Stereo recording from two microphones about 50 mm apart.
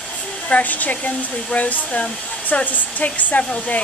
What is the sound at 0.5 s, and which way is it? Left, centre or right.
Speech, left.